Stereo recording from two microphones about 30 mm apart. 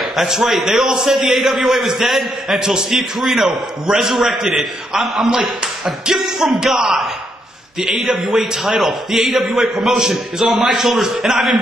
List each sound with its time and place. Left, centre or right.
0.0 s a sound: centre
0.4 s a man's voice: centre
2.6 s a man's voice: centre
3.0 s a man's voice: centre